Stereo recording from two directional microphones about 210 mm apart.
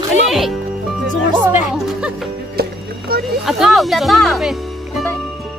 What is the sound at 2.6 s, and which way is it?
Music, 45° right (ahead or behind).